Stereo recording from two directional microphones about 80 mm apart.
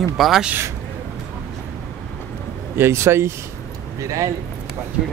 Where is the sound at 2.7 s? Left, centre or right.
Right.